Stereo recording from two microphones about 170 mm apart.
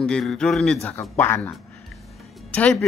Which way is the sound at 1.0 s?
15° left (ahead or behind).